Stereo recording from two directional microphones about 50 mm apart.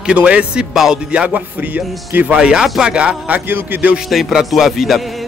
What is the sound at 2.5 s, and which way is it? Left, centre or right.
Speech, centre.